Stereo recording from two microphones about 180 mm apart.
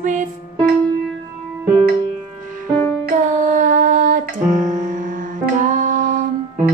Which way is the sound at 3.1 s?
45° right (ahead or behind).